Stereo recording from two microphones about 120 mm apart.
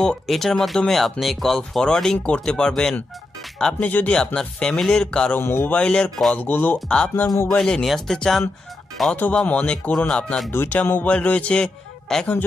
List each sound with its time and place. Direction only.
0.0 s a man's voice: 5° left (ahead or behind)
5.4 s speech: 20° left (ahead or behind)
5.8 s a man's voice: 10° left (ahead or behind)
10.5 s a man's voice: 15° left (ahead or behind)